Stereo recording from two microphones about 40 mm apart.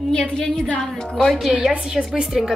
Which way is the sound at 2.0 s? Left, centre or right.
Centre.